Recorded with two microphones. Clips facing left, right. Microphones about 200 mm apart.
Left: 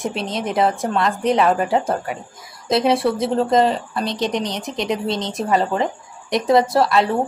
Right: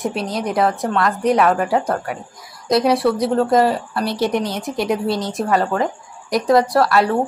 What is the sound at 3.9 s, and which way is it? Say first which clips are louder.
Speech: right 3 dB; 20° left (ahead or behind).